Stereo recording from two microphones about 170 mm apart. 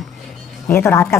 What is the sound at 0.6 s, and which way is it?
Speech, 15° left (ahead or behind).